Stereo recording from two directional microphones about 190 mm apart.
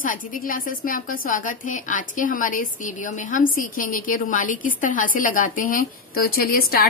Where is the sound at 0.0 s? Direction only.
45° left (ahead or behind).